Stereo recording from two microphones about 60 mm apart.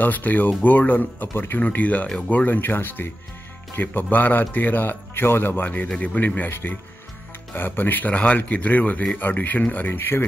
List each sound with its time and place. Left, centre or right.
0.0 s speech: left
1.6 s speech: left